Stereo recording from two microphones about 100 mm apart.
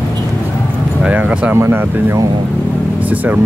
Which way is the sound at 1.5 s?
25° right (ahead or behind).